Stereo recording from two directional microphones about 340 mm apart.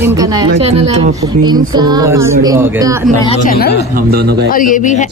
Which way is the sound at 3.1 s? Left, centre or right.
Centre.